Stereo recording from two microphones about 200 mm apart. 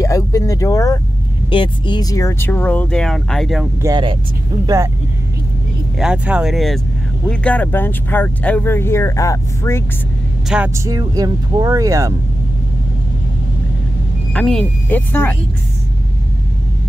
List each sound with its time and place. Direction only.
0.0 s speech: 15° left (ahead or behind); by 3.6 s centre (ahead or behind)
3.8 s speech: 25° right (ahead or behind)
5.9 s speech: 5° right (ahead or behind); by 9.8 s 15° left (ahead or behind)
10.5 s speech: 5° right (ahead or behind)
10.9 s speech: 20° right (ahead or behind)
14.3 s speech: centre (ahead or behind)